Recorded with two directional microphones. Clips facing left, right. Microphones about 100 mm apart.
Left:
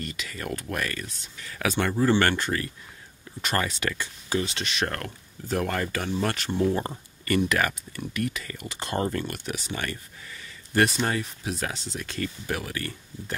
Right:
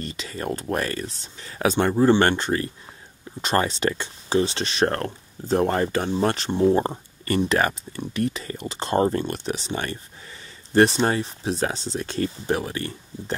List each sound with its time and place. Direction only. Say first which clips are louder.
0.0 s speech: right 4 dB; 30° right (ahead or behind)